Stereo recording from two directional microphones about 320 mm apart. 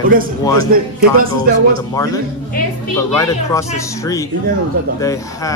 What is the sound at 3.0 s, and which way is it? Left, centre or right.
Speech, centre.